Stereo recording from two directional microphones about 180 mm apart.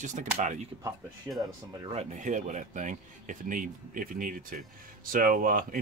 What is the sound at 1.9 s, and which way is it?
Speech, 45° right (ahead or behind).